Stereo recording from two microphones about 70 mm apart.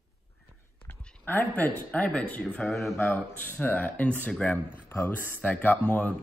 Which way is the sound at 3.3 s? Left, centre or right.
Left.